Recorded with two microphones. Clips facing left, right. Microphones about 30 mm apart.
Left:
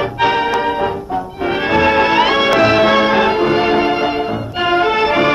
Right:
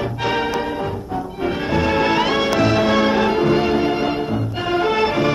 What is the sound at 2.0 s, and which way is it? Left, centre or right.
Music, left.